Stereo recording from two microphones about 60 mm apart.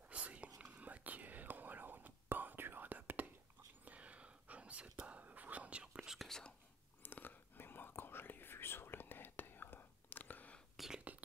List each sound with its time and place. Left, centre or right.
0.1 s whispering: right
6.2 s whispering: centre
7.0 s whispering: left